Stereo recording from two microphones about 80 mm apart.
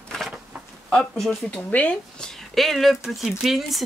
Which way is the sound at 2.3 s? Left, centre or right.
Centre.